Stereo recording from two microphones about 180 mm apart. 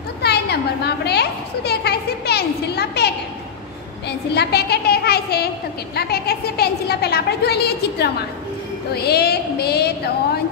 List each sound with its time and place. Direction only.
0.2 s a child's voice: 65° left (ahead or behind)
4.3 s a child's voice: 65° left (ahead or behind)